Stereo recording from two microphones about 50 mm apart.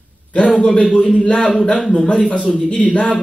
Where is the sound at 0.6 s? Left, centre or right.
Left.